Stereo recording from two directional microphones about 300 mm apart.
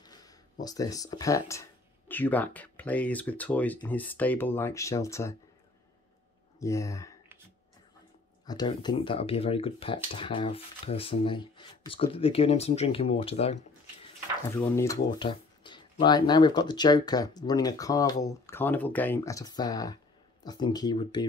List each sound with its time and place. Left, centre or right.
0.0 s speech: centre
6.6 s speech: centre
8.5 s speech: centre
14.6 s speech: centre